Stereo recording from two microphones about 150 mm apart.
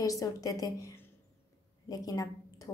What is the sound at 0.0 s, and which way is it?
A woman's voice, 25° left (ahead or behind).